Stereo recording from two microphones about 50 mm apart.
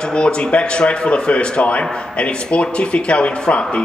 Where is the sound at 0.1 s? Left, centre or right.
Centre.